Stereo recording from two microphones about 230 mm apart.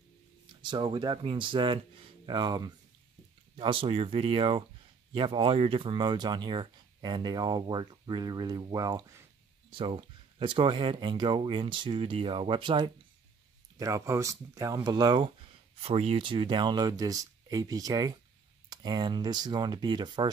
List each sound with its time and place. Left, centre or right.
0.6 s speech: centre